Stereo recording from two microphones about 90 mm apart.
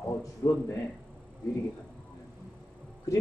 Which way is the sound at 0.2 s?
40° left (ahead or behind).